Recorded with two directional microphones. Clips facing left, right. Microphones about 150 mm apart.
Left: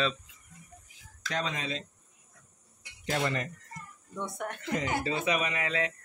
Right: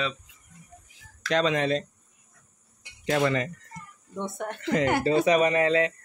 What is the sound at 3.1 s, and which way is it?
Speech, 90° right.